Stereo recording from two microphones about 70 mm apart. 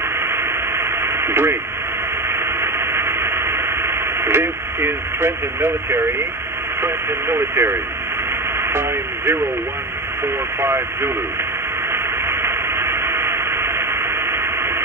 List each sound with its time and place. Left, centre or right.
0.3 s radio: right
2.2 s a sound: right
6.8 s speech: right
8.5 s radio: right
10.2 s speech: right
11.9 s a sound: right